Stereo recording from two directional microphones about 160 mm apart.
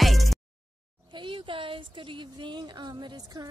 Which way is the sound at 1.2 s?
30° right (ahead or behind).